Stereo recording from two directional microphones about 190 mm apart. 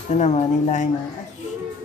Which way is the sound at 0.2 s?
40° left (ahead or behind).